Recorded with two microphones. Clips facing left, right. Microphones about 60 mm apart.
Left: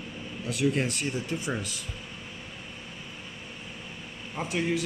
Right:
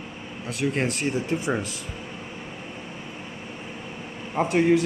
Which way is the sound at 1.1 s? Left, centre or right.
Right.